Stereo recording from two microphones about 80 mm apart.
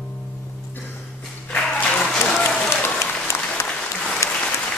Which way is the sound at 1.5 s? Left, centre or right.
Centre.